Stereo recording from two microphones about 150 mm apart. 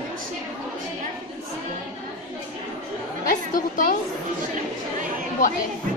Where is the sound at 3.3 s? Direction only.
60° left (ahead or behind).